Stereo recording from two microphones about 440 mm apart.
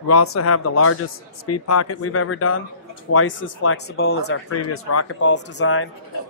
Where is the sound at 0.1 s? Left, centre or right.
Left.